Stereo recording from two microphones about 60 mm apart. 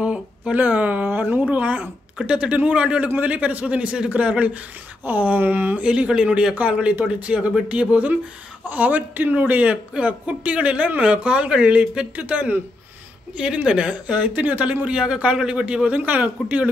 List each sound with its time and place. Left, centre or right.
0.0 s a sound: right
1.5 s a man's voice: right
5.9 s a man's voice: centre